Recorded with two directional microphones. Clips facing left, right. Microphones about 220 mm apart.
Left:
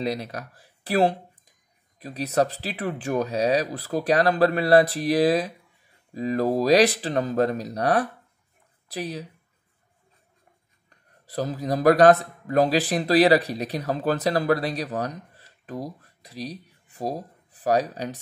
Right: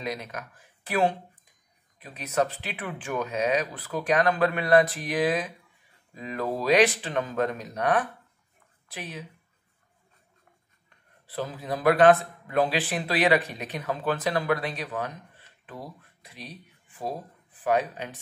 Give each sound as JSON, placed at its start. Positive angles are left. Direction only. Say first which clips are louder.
{"t": 0.0, "sound": "a man's voice", "louder": "left 6 dB", "side_deg": 35}
{"t": 11.2, "sound": "a man's voice", "louder": "left 5 dB", "side_deg": 40}